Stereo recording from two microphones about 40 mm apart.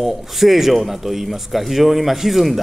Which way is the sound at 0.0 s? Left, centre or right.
Centre.